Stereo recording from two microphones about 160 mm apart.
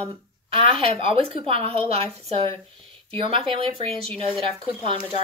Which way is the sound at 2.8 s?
35° right (ahead or behind).